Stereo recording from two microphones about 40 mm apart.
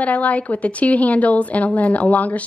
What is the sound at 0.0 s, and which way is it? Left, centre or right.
A woman's voice, left.